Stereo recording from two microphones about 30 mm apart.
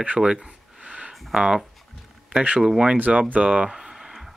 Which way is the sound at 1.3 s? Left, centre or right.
Right.